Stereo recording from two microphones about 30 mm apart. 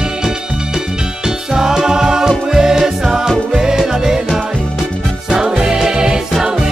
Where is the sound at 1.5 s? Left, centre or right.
Right.